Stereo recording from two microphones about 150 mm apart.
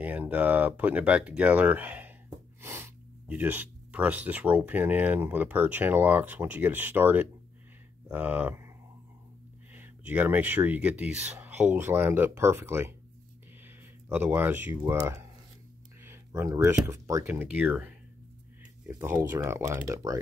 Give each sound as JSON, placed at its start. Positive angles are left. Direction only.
{"t": 0.0, "sound": "speech", "side_deg": -10}
{"t": 9.8, "sound": "speech", "side_deg": -10}
{"t": 14.0, "sound": "speech", "side_deg": -15}